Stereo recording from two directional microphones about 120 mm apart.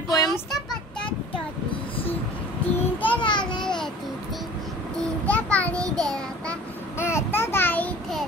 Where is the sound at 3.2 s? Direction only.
40° left (ahead or behind).